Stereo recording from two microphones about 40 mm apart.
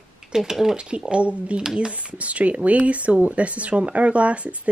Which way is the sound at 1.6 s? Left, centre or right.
Centre.